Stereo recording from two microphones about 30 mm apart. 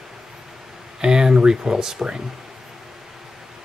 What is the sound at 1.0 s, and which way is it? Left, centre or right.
Speech, right.